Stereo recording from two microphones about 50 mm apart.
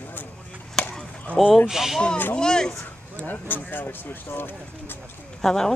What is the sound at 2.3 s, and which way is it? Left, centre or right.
Speech, centre.